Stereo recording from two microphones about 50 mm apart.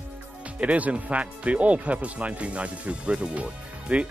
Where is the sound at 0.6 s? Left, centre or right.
Right.